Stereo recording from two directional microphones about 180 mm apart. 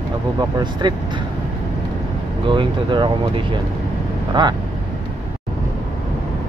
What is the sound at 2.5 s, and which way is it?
Speech, 25° right (ahead or behind).